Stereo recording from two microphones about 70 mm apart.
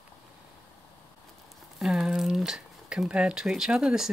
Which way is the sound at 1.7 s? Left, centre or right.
Centre.